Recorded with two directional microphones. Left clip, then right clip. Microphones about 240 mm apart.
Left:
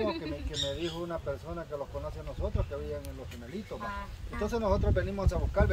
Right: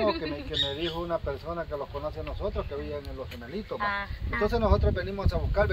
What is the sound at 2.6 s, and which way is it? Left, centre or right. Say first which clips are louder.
Speech: right 5 dB; centre.